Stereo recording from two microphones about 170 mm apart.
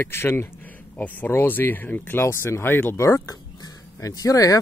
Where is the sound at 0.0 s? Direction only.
15° left (ahead or behind).